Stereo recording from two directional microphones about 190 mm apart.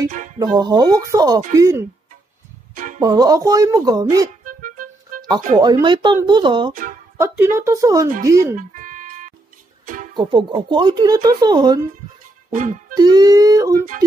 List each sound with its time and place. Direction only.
0.4 s speech: 20° right (ahead or behind)
2.7 s music: 45° right (ahead or behind)
3.0 s speech: 20° right (ahead or behind)
4.6 s music: 45° right (ahead or behind)
5.6 s speech: 20° right (ahead or behind)
6.7 s speech: 45° right (ahead or behind)
7.2 s speech: 15° right (ahead or behind)
8.5 s music: 45° right (ahead or behind)
10.1 s speech: 25° right (ahead or behind)
12.9 s speech: 20° right (ahead or behind)